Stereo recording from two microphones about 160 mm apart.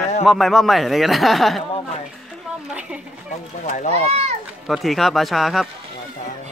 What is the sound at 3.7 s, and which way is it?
Speech, 45° left (ahead or behind).